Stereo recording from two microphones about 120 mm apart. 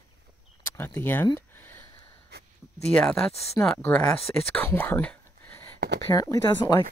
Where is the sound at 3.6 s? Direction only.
20° left (ahead or behind).